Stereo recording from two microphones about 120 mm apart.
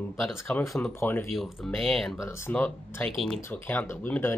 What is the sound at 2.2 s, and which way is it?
Speech, 20° left (ahead or behind).